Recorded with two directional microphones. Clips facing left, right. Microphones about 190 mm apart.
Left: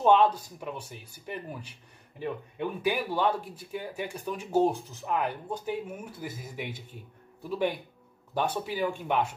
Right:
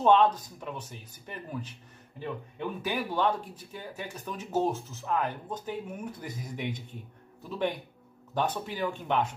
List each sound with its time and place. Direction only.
0.0 s speech: 10° left (ahead or behind)